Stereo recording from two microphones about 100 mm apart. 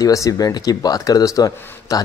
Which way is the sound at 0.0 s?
35° left (ahead or behind).